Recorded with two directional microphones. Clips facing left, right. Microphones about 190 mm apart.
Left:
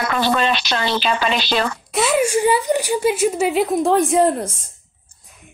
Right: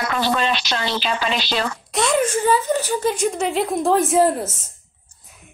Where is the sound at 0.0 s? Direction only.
60° left (ahead or behind).